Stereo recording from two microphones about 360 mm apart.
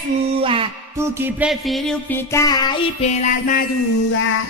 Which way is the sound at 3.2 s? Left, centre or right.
Left.